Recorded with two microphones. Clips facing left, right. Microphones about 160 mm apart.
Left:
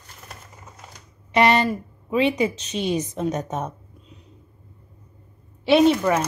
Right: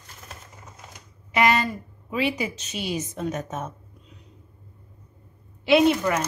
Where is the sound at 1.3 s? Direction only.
30° left (ahead or behind).